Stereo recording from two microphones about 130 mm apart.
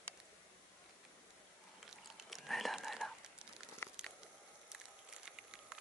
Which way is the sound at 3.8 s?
20° left (ahead or behind).